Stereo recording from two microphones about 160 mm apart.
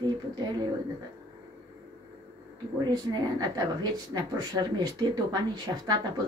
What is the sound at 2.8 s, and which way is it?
Speech, 25° right (ahead or behind).